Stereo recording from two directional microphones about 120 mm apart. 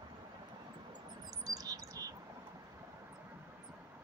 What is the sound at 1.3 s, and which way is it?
Chirp, 30° right (ahead or behind).